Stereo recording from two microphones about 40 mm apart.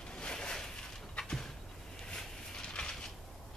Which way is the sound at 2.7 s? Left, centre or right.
Left.